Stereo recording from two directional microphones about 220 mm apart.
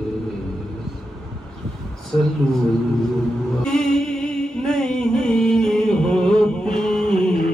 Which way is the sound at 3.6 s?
5° left (ahead or behind).